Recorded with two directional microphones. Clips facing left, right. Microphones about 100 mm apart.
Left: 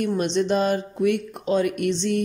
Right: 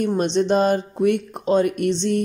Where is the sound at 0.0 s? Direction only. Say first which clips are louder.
Right 3 dB; 35° right (ahead or behind).